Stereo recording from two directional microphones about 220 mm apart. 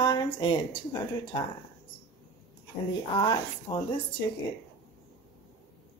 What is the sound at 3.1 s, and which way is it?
Speech, 20° left (ahead or behind).